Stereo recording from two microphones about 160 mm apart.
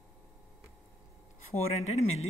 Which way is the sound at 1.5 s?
40° left (ahead or behind).